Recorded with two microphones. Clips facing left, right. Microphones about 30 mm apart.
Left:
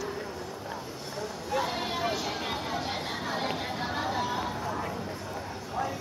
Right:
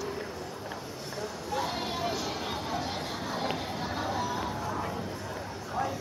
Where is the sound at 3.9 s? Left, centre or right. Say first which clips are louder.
Left 1 dB; centre.